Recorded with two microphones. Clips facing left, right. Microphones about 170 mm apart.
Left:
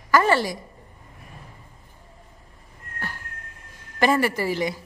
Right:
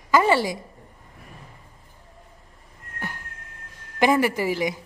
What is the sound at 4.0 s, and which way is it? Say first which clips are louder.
Speech: right 1 dB; 15° right (ahead or behind).